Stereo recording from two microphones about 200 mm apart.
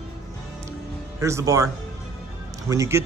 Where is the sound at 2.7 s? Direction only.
15° right (ahead or behind).